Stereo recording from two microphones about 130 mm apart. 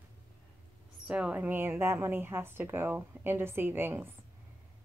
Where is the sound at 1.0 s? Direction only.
10° right (ahead or behind).